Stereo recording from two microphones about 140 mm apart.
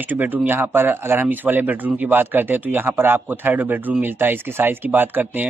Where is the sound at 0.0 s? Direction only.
15° right (ahead or behind).